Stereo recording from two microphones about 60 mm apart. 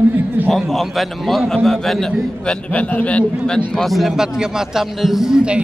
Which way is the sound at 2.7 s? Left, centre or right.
Left.